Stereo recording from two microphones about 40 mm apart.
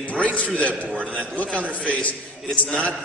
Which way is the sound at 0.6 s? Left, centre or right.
Left.